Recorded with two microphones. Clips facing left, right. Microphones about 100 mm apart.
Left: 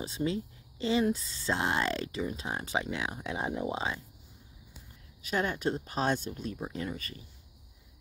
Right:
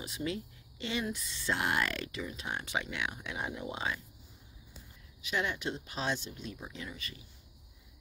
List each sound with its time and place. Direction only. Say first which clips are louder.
0.0 s speech: left 5 dB; 30° left (ahead or behind)
5.2 s speech: left 4 dB; 40° left (ahead or behind)